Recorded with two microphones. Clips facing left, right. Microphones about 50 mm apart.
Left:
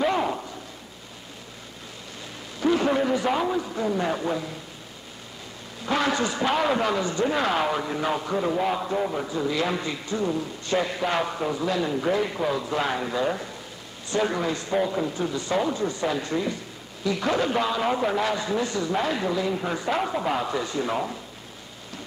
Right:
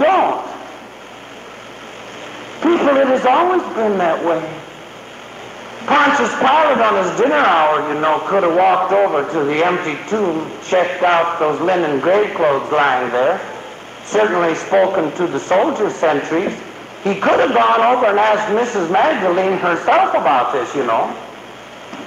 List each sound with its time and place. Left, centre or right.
0.0 s a sound: right
2.6 s a man's voice: right
5.9 s a man's voice: right